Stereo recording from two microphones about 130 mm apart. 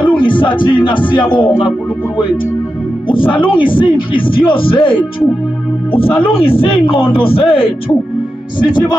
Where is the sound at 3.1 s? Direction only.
40° left (ahead or behind).